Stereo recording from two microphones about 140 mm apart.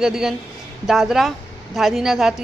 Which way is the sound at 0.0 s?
5° right (ahead or behind).